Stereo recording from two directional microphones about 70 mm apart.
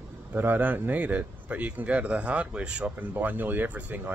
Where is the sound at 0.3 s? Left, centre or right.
Right.